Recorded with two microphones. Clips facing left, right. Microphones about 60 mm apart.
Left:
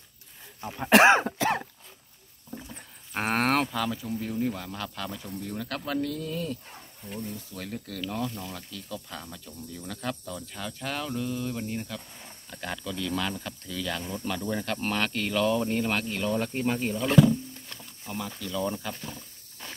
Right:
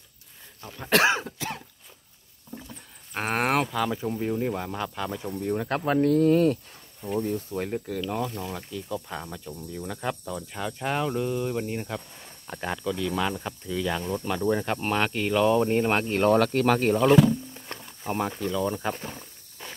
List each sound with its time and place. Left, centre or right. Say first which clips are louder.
0.6 s throat clearing: left 4 dB; centre
1.0 s cough: left 5 dB; left
3.1 s speech: even; centre
3.9 s speech: right 4 dB; right
5.4 s speech: right 8 dB; right
7.5 s speech: right 7 dB; right
15.7 s speech: right 5 dB; right
16.2 s speech: right 8 dB; right
17.6 s a sound: right 8 dB; right
18.3 s speech: right 4 dB; right
19.6 s a sound: right 1 dB; centre